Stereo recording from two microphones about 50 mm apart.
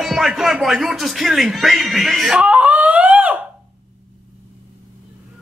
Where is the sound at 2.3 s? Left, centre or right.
Right.